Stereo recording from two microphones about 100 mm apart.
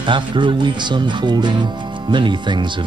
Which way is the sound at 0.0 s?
55° right (ahead or behind).